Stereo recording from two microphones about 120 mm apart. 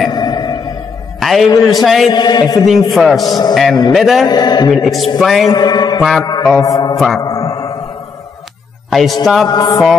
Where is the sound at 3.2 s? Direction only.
35° left (ahead or behind).